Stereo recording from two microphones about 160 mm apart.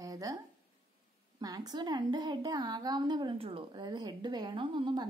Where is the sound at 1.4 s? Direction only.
25° right (ahead or behind).